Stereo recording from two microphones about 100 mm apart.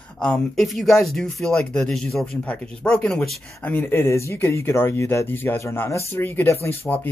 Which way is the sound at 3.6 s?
20° left (ahead or behind).